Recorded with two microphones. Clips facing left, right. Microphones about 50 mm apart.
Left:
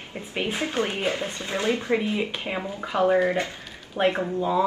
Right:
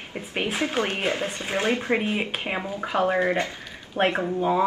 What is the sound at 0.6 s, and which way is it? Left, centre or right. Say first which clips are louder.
A woman's voice: right 1 dB; right.